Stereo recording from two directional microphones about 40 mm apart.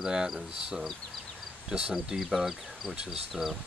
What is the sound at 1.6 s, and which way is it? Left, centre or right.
Speech, right.